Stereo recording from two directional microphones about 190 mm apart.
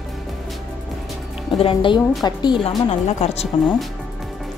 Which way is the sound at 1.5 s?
25° left (ahead or behind).